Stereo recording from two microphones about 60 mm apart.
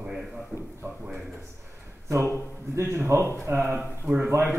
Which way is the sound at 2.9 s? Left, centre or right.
Right.